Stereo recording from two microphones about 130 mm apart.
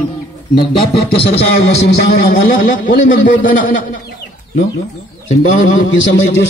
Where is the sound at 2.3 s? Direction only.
90° left.